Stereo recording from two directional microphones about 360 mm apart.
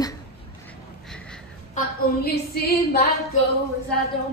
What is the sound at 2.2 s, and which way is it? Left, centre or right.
Female singing, left.